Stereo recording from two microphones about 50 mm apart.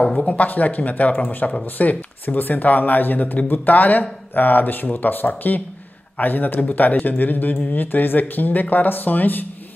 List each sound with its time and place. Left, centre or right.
0.2 s speech: left
1.8 s speech: left